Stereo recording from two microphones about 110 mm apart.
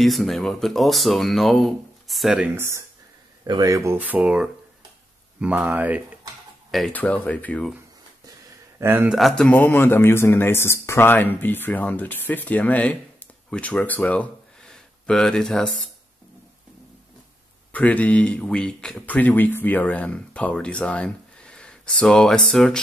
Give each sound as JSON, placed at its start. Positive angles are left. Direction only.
{"t": 0.0, "sound": "speech", "side_deg": 0}
{"t": 2.5, "sound": "speech", "side_deg": -25}
{"t": 3.4, "sound": "speech", "side_deg": -35}
{"t": 6.9, "sound": "speech", "side_deg": 15}
{"t": 8.7, "sound": "a man's voice", "side_deg": -20}
{"t": 9.1, "sound": "speech", "side_deg": 0}
{"t": 17.7, "sound": "speech", "side_deg": 15}